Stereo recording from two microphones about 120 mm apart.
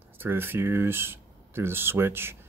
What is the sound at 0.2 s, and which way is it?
Speech, 15° right (ahead or behind).